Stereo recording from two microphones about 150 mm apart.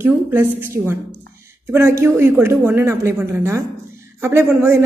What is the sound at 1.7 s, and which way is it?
A woman's voice, 15° right (ahead or behind).